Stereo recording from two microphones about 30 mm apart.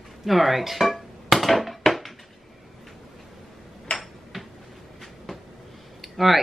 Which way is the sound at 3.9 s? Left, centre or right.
Left.